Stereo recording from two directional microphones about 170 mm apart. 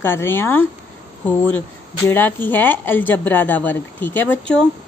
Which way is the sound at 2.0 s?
10° left (ahead or behind).